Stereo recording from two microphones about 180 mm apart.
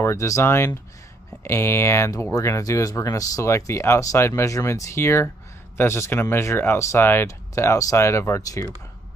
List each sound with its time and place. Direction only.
0.0 s speech: 15° left (ahead or behind)